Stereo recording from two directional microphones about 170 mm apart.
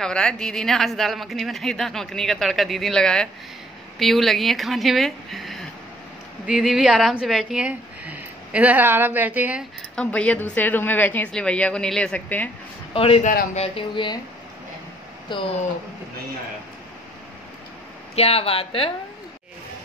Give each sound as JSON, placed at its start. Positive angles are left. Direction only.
{"t": 0.0, "sound": "speech", "side_deg": 5}
{"t": 9.9, "sound": "a woman's voice", "side_deg": 5}
{"t": 12.9, "sound": "speech", "side_deg": 35}
{"t": 15.3, "sound": "speech", "side_deg": 25}
{"t": 18.1, "sound": "speech", "side_deg": 35}